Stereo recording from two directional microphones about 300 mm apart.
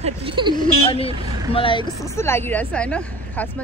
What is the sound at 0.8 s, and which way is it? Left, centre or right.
Speech, centre.